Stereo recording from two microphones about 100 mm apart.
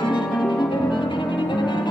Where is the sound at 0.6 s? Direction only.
50° left (ahead or behind).